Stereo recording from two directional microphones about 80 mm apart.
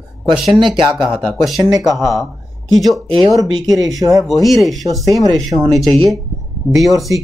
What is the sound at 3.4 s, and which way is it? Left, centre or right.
Speech, right.